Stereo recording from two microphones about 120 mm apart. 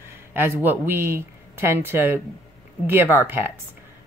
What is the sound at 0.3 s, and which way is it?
A woman's voice, 15° right (ahead or behind).